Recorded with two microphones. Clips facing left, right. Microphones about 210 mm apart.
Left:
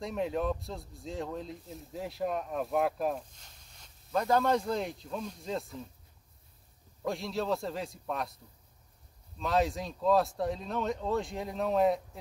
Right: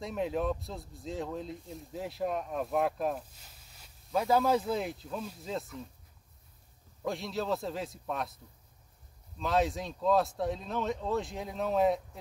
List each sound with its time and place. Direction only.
0.0 s speech: centre (ahead or behind)
7.0 s speech: centre (ahead or behind)
9.4 s speech: centre (ahead or behind)